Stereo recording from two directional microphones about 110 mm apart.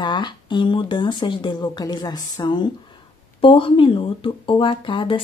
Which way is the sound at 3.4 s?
55° left (ahead or behind).